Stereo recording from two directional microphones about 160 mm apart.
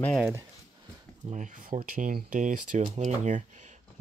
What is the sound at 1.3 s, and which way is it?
Speech, 50° right (ahead or behind).